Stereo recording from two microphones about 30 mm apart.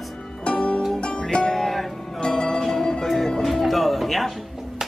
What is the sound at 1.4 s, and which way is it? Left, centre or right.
Music, centre.